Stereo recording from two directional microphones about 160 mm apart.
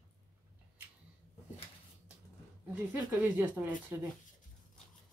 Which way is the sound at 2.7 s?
10° right (ahead or behind).